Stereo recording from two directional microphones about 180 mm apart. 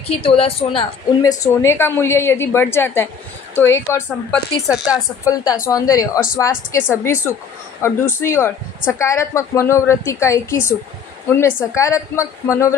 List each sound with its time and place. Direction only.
0.0 s a woman's voice: 35° left (ahead or behind)
1.2 s speech: 20° left (ahead or behind)
4.7 s a woman's voice: centre (ahead or behind)
5.2 s speech: 20° left (ahead or behind)